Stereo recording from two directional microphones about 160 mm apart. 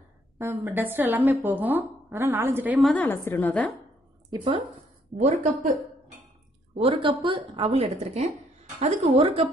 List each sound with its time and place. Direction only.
0.4 s a woman's voice: 15° right (ahead or behind)
2.8 s a woman's voice: 5° left (ahead or behind)
5.1 s speech: 50° right (ahead or behind)
6.7 s a woman's voice: 35° right (ahead or behind)